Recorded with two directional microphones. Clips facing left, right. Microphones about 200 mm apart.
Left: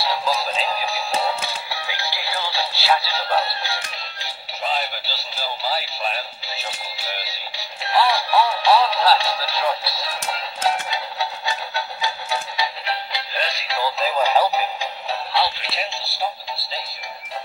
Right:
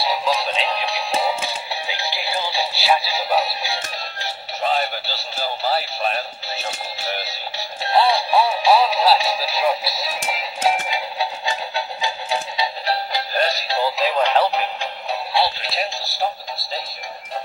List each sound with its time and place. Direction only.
0.0 s synthetic singing: 15° right (ahead or behind)
0.5 s music: 5° left (ahead or behind)
1.1 s music: 15° right (ahead or behind)
4.6 s synthetic singing: 50° right (ahead or behind)
7.8 s synthetic singing: 25° right (ahead or behind)
12.8 s synthetic singing: 45° right (ahead or behind)
14.0 s synthetic singing: 5° left (ahead or behind)
15.4 s synthetic singing: 40° right (ahead or behind)